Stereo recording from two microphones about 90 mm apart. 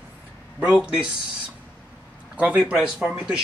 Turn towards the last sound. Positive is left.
turn(degrees=-10)  # may be behind; listen again after turning